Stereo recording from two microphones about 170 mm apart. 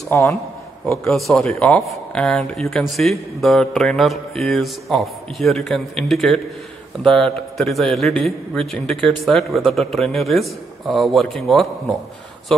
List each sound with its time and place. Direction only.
0.1 s a man's voice: 15° left (ahead or behind)
1.0 s a man's voice: centre (ahead or behind)